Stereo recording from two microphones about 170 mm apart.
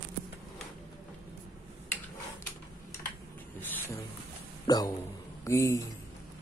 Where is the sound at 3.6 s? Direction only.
10° left (ahead or behind).